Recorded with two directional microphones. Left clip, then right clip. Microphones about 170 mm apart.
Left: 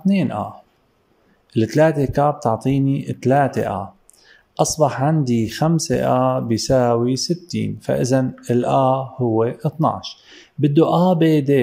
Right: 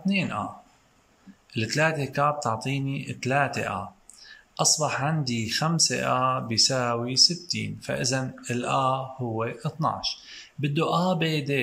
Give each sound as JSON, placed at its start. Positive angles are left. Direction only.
{"t": 0.0, "sound": "speech", "side_deg": 40}
{"t": 1.5, "sound": "speech", "side_deg": 40}